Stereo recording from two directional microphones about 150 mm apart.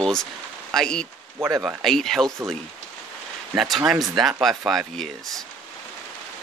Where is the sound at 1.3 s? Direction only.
15° right (ahead or behind).